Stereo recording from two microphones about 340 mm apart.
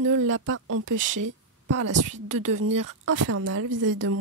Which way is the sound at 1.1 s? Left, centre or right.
Right.